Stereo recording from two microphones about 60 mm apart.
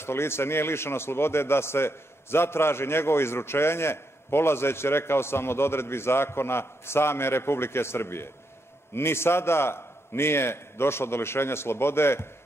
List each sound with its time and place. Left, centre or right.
0.0 s a man's voice: left